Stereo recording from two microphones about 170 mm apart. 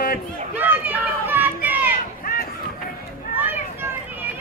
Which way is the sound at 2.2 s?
55° left (ahead or behind).